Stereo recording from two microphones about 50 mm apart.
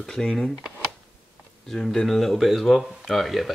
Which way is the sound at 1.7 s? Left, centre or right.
Centre.